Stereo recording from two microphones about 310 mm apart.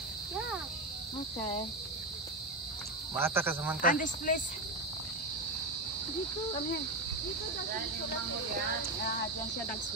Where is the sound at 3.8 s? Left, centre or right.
Left.